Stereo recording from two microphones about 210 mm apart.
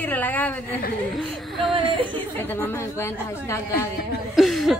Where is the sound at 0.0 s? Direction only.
10° left (ahead or behind).